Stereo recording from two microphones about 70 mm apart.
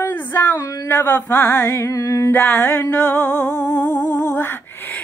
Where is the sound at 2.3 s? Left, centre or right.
Left.